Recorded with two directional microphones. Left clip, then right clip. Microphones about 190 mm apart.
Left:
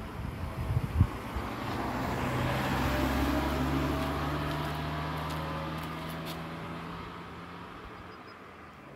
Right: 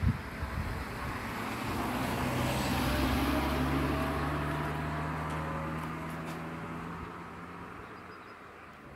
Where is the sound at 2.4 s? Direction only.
30° left (ahead or behind); by 8.1 s 45° left (ahead or behind).